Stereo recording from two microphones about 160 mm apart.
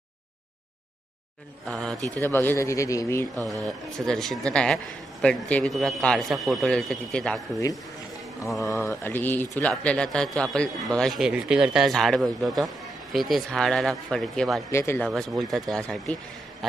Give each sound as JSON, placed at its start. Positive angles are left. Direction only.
{"t": 1.7, "sound": "a man's voice", "side_deg": 0}
{"t": 2.1, "sound": "speech", "side_deg": 15}
{"t": 3.4, "sound": "a man's voice", "side_deg": 0}
{"t": 8.5, "sound": "a man's voice", "side_deg": 20}
{"t": 14.7, "sound": "speech", "side_deg": 15}
{"t": 15.0, "sound": "a man's voice", "side_deg": 0}